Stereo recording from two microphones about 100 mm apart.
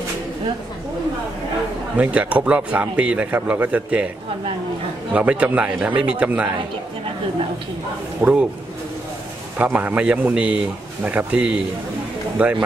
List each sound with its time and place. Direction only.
2.0 s speech: 15° right (ahead or behind)
5.1 s speech: 15° right (ahead or behind)
8.2 s speech: 15° right (ahead or behind)
9.6 s speech: 15° right (ahead or behind)